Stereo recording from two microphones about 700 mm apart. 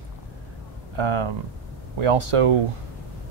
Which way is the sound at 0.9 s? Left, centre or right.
Right.